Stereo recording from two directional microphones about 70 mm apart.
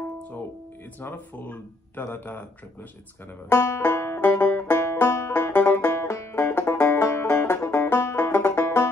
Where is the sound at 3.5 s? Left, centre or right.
Left.